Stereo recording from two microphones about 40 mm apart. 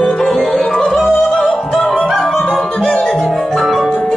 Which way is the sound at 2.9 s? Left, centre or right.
Left.